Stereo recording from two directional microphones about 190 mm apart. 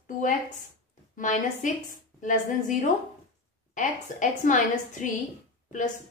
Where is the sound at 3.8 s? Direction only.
40° left (ahead or behind).